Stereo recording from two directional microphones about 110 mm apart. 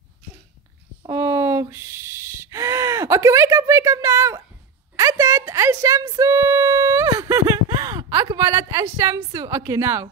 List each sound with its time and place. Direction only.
1.1 s gasp: 25° right (ahead or behind)
4.9 s a sound: 30° right (ahead or behind)
8.9 s a woman's voice: 30° right (ahead or behind)